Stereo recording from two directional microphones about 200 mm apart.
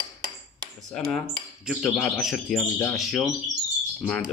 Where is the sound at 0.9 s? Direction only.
Centre (ahead or behind).